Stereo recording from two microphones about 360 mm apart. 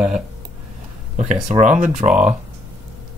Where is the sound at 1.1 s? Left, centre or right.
Centre.